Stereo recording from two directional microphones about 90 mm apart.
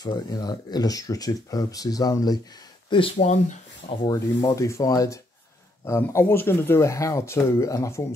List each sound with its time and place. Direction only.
0.0 s speech: 50° left (ahead or behind)
2.9 s speech: 80° left
4.1 s speech: 40° left (ahead or behind)
5.9 s speech: 30° left (ahead or behind)